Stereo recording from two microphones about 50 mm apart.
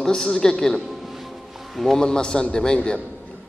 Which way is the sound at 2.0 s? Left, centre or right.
Centre.